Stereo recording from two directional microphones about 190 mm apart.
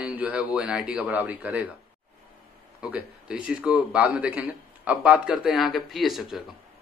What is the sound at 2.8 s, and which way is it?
A man's voice, 5° right (ahead or behind).